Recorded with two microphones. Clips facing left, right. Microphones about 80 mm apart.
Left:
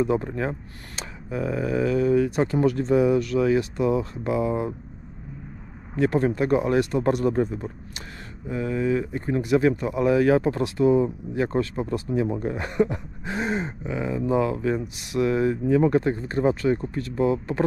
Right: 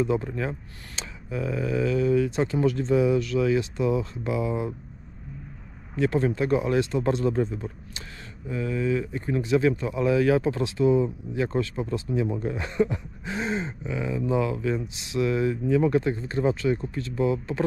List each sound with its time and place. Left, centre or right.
0.0 s speech: left
5.9 s speech: left
8.5 s speech: left
12.8 s a sound: left
13.8 s speech: left
16.7 s speech: left
17.2 s speech: left